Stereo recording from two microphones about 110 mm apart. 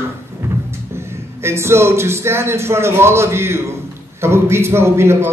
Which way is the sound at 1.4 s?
25° right (ahead or behind).